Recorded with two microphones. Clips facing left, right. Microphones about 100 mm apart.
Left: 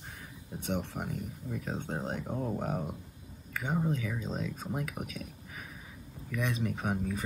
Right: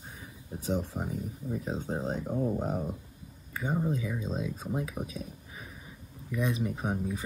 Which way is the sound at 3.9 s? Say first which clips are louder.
Right 2 dB; 15° right (ahead or behind).